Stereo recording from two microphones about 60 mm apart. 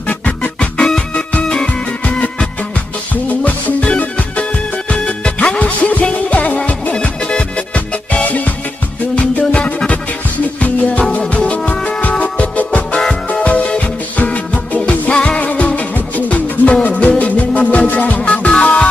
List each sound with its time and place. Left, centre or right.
0.1 s music: left
0.6 s music: centre